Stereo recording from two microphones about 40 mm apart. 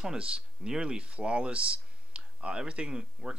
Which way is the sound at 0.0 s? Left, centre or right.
Right.